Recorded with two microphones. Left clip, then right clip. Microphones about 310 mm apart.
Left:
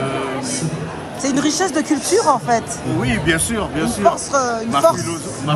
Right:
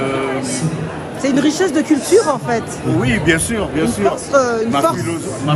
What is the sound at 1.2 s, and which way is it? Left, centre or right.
Speech, left.